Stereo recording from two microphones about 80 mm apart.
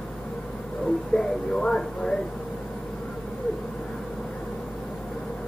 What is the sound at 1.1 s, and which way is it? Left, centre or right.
Speech, centre.